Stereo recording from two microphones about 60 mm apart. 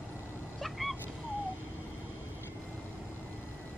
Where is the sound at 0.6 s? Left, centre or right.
Centre.